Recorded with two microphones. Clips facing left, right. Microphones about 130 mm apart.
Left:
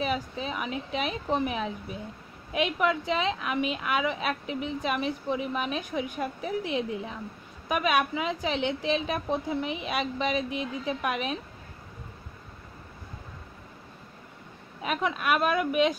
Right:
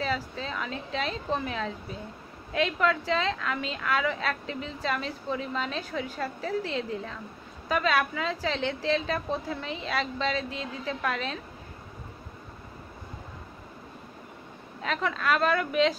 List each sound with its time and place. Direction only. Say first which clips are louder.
0.0 s a woman's voice: left 1 dB; 15° left (ahead or behind)
14.8 s a woman's voice: left 1 dB; 15° left (ahead or behind)